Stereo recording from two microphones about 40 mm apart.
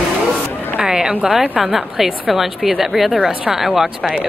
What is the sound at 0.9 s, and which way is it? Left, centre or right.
A woman's voice, centre.